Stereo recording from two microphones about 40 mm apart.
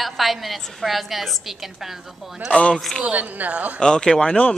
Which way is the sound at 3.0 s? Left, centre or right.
Right.